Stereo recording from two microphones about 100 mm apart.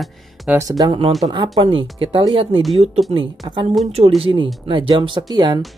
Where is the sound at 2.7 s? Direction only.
90° right.